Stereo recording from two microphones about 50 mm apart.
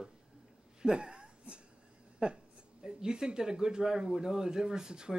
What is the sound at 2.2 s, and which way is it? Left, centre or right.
A woman's voice, right.